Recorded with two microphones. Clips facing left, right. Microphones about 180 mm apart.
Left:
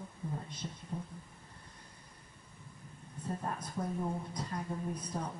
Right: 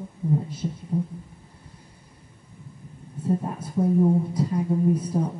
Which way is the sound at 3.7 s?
25° right (ahead or behind).